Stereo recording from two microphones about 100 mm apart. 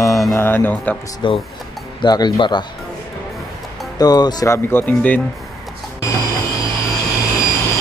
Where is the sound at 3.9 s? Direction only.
40° left (ahead or behind).